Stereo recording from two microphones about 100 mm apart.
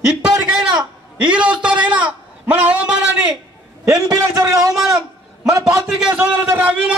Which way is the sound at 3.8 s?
35° right (ahead or behind).